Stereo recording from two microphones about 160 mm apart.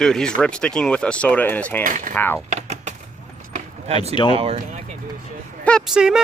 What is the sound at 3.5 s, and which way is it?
Keys jangling, 40° right (ahead or behind).